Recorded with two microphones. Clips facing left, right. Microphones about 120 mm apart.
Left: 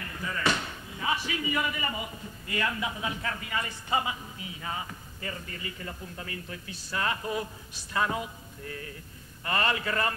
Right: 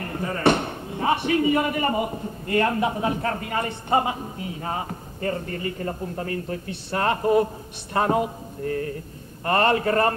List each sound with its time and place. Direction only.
0.0 s chop: 45° right (ahead or behind)
0.4 s a man's voice: 55° right (ahead or behind)
6.7 s a man's voice: 55° right (ahead or behind)